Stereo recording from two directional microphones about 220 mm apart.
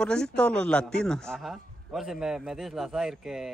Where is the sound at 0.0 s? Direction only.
5° left (ahead or behind).